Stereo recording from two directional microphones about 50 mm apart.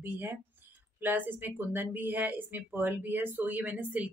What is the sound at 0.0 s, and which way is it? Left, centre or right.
A woman's voice, right.